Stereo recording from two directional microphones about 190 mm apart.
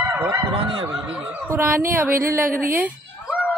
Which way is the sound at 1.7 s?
50° right (ahead or behind).